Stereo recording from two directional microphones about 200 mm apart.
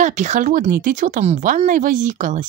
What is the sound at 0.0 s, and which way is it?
Speech, 35° right (ahead or behind).